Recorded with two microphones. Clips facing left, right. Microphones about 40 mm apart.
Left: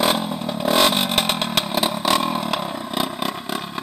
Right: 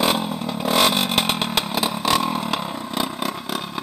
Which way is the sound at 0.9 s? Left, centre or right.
Left.